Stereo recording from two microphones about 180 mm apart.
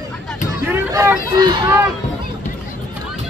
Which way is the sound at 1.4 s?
25° right (ahead or behind).